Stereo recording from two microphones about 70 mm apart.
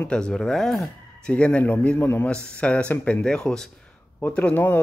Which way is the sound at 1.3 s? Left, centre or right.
Centre.